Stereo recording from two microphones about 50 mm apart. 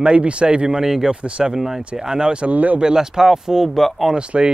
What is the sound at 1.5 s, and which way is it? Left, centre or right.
Speech, centre.